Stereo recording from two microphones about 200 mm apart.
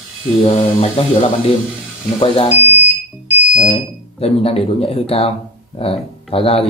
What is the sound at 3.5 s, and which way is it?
Speech, 35° left (ahead or behind).